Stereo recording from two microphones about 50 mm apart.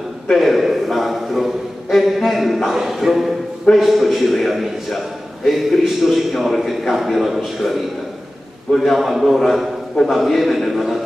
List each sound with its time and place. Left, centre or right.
0.4 s a man's voice: centre